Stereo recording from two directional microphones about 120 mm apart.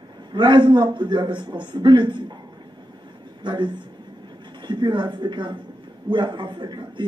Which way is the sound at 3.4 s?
40° right (ahead or behind).